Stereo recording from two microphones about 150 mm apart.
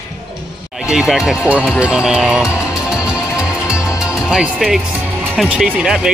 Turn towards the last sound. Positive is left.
turn(degrees=-5)  # may be behind; listen again after turning